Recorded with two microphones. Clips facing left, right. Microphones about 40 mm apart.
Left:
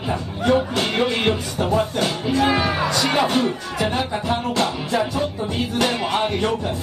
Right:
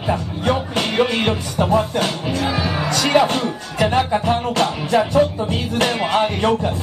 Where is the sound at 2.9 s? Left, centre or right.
Right.